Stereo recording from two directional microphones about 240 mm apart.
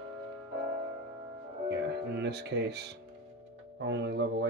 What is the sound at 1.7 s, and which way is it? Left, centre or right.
Speech, right.